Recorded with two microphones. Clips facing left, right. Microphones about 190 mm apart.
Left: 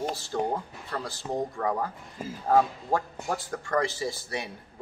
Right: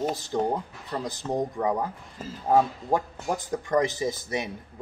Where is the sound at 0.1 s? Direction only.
20° right (ahead or behind).